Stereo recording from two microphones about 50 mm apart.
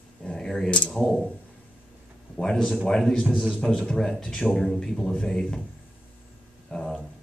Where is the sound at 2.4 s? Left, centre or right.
Centre.